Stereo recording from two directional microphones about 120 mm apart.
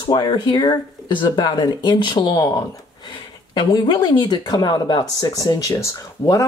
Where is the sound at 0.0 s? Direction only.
35° left (ahead or behind).